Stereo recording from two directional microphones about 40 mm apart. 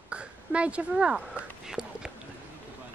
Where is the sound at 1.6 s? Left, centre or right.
Centre.